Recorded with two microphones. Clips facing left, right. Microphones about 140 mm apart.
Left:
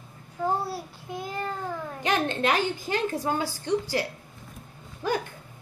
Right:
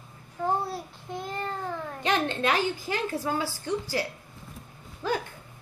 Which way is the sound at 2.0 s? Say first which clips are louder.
Left 1 dB; 15° left (ahead or behind).